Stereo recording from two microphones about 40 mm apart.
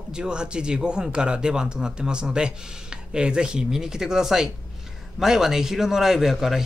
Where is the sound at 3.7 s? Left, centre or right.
Centre.